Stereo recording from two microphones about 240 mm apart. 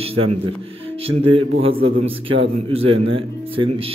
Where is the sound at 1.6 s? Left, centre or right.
Right.